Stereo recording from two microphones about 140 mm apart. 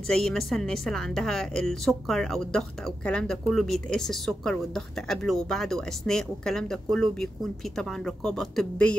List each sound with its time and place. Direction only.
0.1 s a woman's voice: centre (ahead or behind)